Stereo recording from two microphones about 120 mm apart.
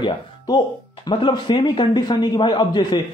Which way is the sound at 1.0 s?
40° left (ahead or behind).